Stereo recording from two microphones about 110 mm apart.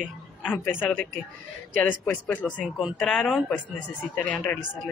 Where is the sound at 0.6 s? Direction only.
15° left (ahead or behind).